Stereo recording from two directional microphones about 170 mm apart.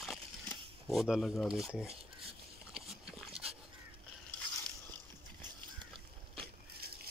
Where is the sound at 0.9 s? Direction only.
Centre (ahead or behind).